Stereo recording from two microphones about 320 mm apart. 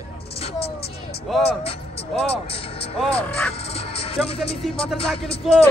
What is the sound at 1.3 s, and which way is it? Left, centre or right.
Speech, centre.